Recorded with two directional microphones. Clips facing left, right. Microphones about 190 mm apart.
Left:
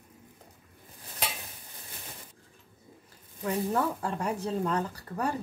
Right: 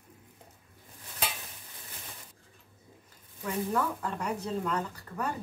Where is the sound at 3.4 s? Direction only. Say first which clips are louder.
Left 2 dB; 30° left (ahead or behind).